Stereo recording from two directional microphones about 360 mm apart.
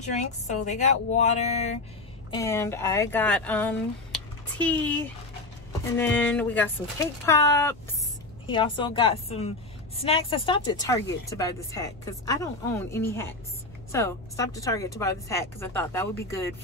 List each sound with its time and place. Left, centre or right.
0.0 s speech: centre
2.3 s speech: centre